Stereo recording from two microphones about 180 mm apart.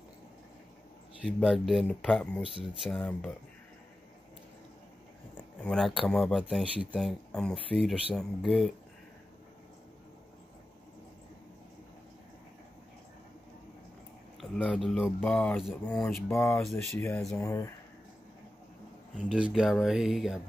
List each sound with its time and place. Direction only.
1.2 s speech: centre (ahead or behind)
5.6 s speech: 5° left (ahead or behind)
14.4 s speech: centre (ahead or behind)
16.3 s speech: 15° left (ahead or behind)
16.6 s speech: centre (ahead or behind)
17.4 s speech: 15° left (ahead or behind)
19.2 s speech: 5° right (ahead or behind)